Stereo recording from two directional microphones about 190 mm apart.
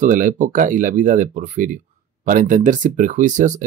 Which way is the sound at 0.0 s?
40° right (ahead or behind).